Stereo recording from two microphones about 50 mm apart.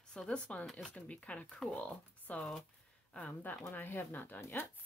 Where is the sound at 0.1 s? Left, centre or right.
Centre.